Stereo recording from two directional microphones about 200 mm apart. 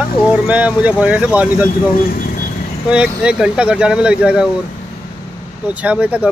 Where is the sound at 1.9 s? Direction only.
45° left (ahead or behind).